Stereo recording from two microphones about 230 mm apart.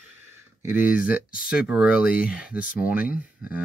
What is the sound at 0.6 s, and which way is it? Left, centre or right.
Speech, centre.